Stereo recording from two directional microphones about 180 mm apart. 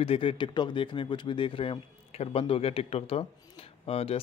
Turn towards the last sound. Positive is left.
turn(degrees=30)  # may be behind; listen again after turning